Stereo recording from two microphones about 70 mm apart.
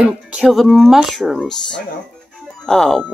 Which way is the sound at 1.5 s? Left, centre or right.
Centre.